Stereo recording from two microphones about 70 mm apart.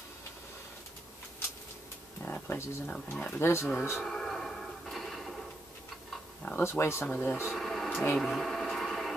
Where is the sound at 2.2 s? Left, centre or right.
Left.